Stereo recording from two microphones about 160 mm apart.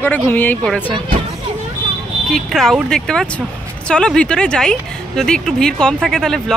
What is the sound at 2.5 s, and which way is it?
A woman's voice, centre (ahead or behind).